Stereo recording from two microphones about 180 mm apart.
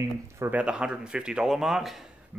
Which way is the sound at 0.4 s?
10° right (ahead or behind).